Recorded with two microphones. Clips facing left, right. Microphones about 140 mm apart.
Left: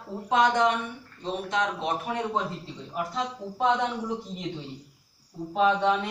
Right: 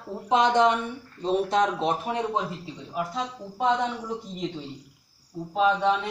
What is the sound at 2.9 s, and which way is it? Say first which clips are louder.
Speech: even; 5° right (ahead or behind).